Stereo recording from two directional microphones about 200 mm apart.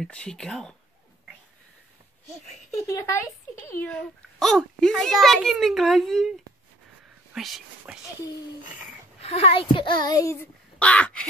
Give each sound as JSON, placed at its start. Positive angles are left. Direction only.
{"t": 0.0, "sound": "a child's voice", "side_deg": 5}
{"t": 2.9, "sound": "a child's voice", "side_deg": 15}
{"t": 7.3, "sound": "a child's voice", "side_deg": 0}
{"t": 9.2, "sound": "a child's voice", "side_deg": 30}